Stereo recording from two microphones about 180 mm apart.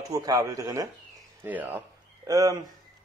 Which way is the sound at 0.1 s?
20° right (ahead or behind).